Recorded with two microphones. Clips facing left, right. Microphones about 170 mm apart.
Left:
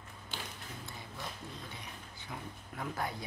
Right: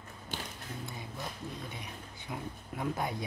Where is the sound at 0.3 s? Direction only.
45° right (ahead or behind).